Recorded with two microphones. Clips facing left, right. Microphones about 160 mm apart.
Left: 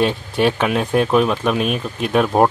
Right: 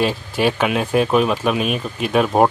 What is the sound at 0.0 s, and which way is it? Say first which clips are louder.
Speech: left 1 dB; centre (ahead or behind).